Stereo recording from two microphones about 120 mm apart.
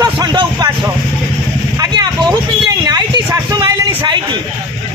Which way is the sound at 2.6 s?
35° right (ahead or behind).